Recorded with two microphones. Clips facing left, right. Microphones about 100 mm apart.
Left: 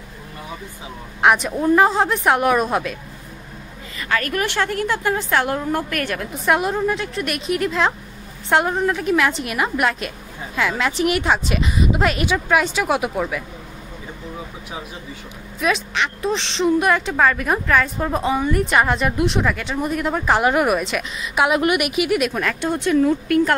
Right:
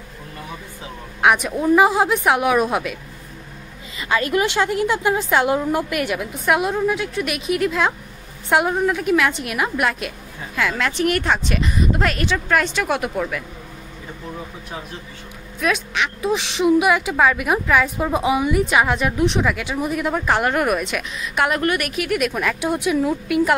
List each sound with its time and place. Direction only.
1.2 s a woman's voice: centre (ahead or behind)
4.0 s a woman's voice: 20° right (ahead or behind)
6.4 s a woman's voice: centre (ahead or behind)
15.6 s a woman's voice: centre (ahead or behind)